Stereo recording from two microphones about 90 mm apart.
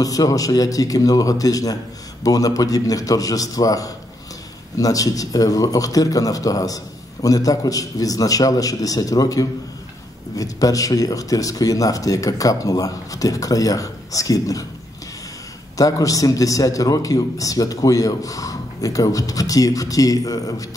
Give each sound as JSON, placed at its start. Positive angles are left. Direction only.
{"t": 0.0, "sound": "a man's voice", "side_deg": 40}
{"t": 15.8, "sound": "a man's voice", "side_deg": 40}